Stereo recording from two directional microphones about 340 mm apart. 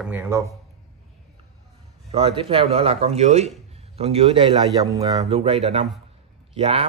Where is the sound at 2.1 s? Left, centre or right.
Centre.